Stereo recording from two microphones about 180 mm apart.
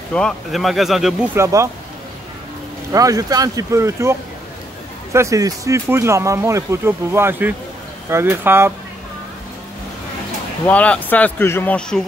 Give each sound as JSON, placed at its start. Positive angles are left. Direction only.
{"t": 0.1, "sound": "speech", "side_deg": 5}
{"t": 1.3, "sound": "speech", "side_deg": -15}
{"t": 2.9, "sound": "speech", "side_deg": -20}
{"t": 10.7, "sound": "speech", "side_deg": 5}